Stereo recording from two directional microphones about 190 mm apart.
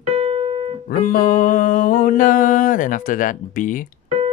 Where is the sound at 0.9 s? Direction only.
50° left (ahead or behind).